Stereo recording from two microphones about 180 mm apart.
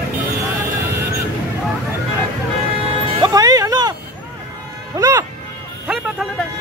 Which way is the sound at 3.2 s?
20° right (ahead or behind).